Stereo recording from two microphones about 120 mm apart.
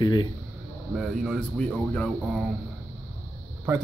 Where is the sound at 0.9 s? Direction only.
Centre (ahead or behind).